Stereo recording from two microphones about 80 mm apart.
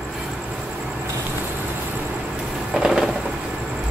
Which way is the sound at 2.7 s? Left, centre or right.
Centre.